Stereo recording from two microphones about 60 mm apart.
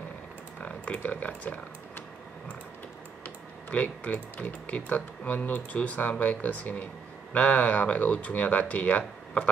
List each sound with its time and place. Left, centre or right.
0.6 s computer keyboard: left
3.3 s speech: left